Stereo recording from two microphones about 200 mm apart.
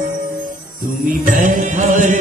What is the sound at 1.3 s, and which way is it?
Mantra, 40° right (ahead or behind).